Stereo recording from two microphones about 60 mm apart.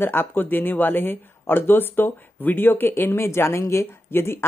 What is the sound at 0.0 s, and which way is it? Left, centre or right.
Speech, left.